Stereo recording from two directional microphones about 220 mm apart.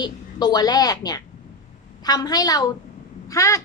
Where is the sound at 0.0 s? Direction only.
20° left (ahead or behind).